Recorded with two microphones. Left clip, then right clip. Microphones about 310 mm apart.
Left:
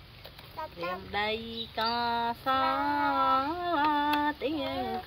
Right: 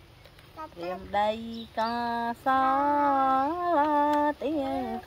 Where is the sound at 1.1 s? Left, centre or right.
Right.